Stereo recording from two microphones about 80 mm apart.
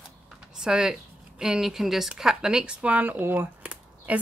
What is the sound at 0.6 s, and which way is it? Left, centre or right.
Speech, centre.